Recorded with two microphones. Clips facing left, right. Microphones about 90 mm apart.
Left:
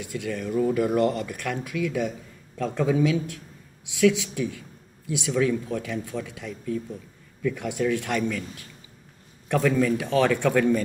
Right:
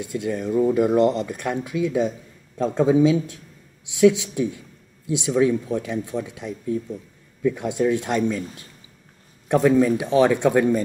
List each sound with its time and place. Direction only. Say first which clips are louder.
0.0 s a woman's voice: right 5 dB; 25° right (ahead or behind)
9.5 s a woman's voice: right 5 dB; 20° right (ahead or behind)